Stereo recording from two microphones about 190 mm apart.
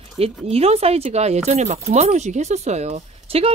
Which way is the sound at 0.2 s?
30° right (ahead or behind).